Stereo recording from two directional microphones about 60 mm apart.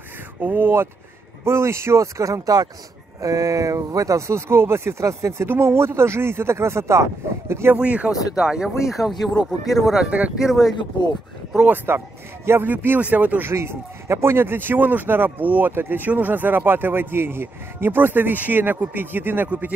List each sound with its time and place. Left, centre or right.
0.4 s speech: right
1.4 s speech: right
3.2 s speech: right
5.5 s speech: right
7.7 s speech: right
8.4 s speech: centre
10.0 s speech: right
10.4 s speech: centre
11.6 s speech: right
13.5 s speech: right